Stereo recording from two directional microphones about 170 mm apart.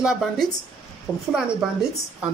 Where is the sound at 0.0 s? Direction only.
Centre (ahead or behind).